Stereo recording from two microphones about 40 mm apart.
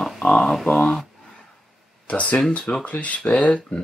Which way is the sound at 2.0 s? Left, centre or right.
Left.